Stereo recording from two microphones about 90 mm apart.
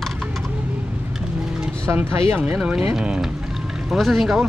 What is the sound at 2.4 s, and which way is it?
Speech, 10° right (ahead or behind).